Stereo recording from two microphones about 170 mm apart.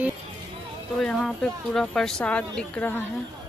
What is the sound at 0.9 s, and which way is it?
Speech, centre (ahead or behind).